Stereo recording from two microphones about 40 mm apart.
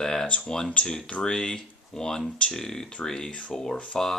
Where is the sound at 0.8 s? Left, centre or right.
Centre.